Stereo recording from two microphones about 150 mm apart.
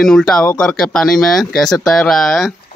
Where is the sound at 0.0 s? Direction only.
Centre (ahead or behind).